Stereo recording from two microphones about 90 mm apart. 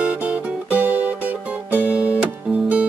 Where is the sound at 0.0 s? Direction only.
15° right (ahead or behind).